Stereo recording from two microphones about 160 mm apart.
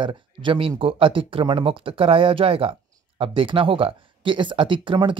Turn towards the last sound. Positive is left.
turn(degrees=-30)  # may be behind; listen again after turning